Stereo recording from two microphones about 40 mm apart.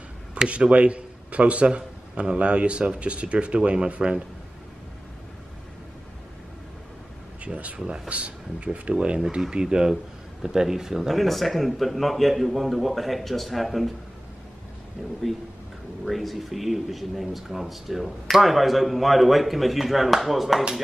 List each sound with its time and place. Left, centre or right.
0.5 s a man's voice: right
7.4 s speech: right; by 13.9 s centre
16.1 s speech: centre